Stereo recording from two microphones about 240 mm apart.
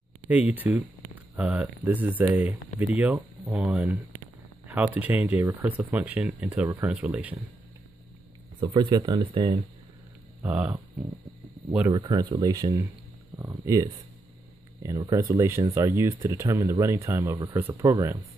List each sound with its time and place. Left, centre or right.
0.3 s speech: centre
8.5 s speech: centre